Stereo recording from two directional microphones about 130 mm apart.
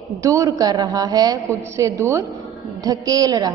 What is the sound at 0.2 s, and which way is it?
Music, 25° right (ahead or behind).